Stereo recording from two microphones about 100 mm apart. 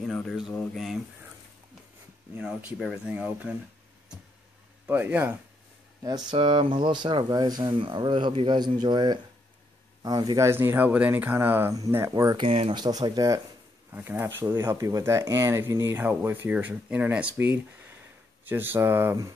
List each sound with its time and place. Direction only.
0.0 s speech: 5° left (ahead or behind)
2.3 s speech: 10° right (ahead or behind)
4.8 s speech: 20° right (ahead or behind)
6.3 s speech: 60° right (ahead or behind)
10.4 s speech: 25° right (ahead or behind); by 12.4 s 40° right (ahead or behind)
12.4 s speech: 70° right (ahead or behind)
12.7 s speech: 45° right (ahead or behind)
13.9 s speech: 20° right (ahead or behind)
18.4 s speech: 20° right (ahead or behind)